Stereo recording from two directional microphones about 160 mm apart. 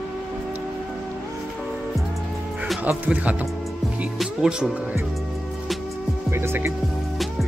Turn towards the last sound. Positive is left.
turn(degrees=-15)  # may be behind; listen again after turning